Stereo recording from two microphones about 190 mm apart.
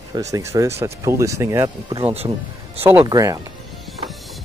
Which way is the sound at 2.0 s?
30° right (ahead or behind).